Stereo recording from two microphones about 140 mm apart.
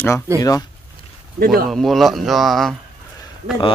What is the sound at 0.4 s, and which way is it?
Speech, 25° left (ahead or behind).